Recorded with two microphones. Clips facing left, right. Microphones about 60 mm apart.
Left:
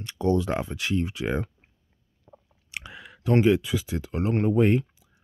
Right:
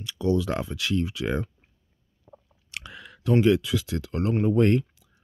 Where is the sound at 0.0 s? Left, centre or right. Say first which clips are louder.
Left 1 dB; left.